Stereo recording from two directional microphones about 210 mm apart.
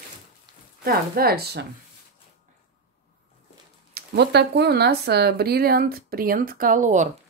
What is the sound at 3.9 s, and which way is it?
Speech, 50° right (ahead or behind).